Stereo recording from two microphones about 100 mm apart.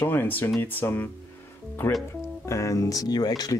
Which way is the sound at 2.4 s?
30° left (ahead or behind).